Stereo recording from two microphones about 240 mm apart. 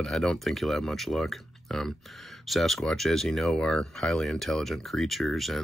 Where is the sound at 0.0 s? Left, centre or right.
Centre.